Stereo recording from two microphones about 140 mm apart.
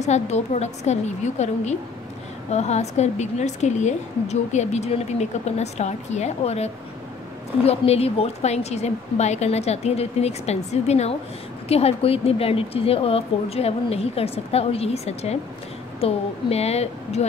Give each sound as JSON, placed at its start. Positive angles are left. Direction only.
{"t": 0.0, "sound": "a woman's voice", "side_deg": 55}